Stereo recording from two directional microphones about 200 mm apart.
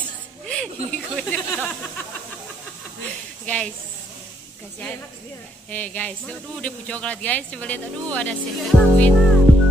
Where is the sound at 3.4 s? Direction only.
5° left (ahead or behind).